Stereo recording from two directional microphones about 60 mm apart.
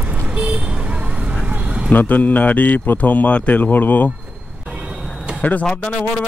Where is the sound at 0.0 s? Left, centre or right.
Right.